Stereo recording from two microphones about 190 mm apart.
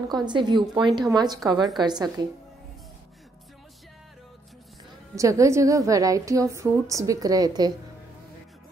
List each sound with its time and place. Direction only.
0.2 s speech: 25° right (ahead or behind)
5.1 s a woman's voice: 15° right (ahead or behind)